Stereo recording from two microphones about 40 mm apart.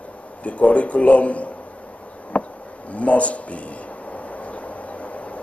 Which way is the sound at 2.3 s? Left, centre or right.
Left.